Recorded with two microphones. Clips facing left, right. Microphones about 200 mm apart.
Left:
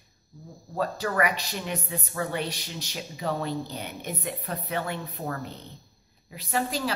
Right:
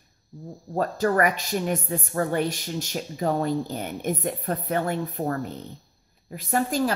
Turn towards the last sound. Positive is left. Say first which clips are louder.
# right 5 dB
turn(degrees=-45)  # may be behind; listen again after turning